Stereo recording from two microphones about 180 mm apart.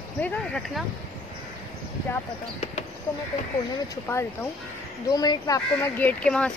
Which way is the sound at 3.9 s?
15° left (ahead or behind).